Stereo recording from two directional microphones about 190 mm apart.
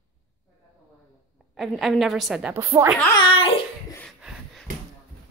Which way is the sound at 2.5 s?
15° right (ahead or behind).